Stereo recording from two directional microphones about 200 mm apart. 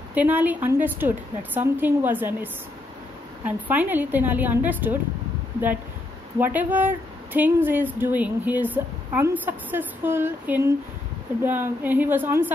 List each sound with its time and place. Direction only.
0.1 s speech: 10° right (ahead or behind)
6.4 s speech: 10° right (ahead or behind)